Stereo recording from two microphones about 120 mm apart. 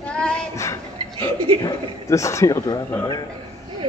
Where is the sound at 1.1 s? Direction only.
45° right (ahead or behind).